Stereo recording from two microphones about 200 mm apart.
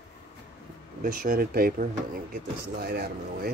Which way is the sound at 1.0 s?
45° right (ahead or behind).